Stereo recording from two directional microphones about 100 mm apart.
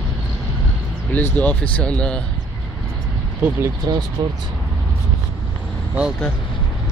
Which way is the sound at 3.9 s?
40° right (ahead or behind).